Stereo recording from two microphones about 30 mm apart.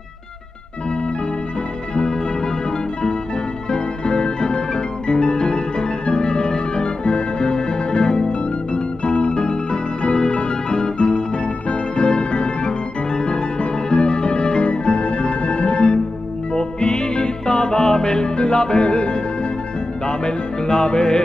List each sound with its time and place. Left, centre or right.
2.0 s music: left
3.7 s music: left
17.8 s music: left